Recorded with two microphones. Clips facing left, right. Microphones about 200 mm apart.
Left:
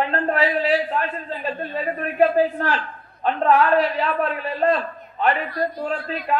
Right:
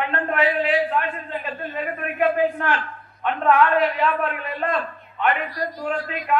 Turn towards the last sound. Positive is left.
turn(degrees=35)  # may be behind; listen again after turning